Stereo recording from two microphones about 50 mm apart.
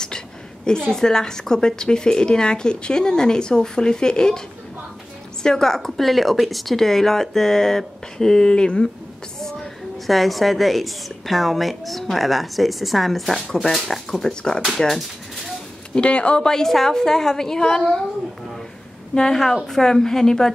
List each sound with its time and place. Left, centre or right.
0.7 s a woman's voice: centre
5.4 s a woman's voice: centre
9.4 s a woman's voice: centre
15.0 s a sound: centre
15.9 s speech: left
16.4 s a woman's voice: centre
19.1 s a woman's voice: centre